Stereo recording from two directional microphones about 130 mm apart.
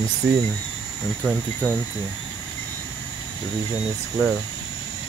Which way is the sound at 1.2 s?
10° left (ahead or behind).